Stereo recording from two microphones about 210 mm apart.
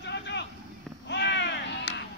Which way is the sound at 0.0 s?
55° left (ahead or behind).